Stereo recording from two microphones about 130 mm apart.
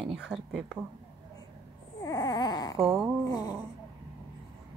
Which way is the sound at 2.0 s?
30° left (ahead or behind).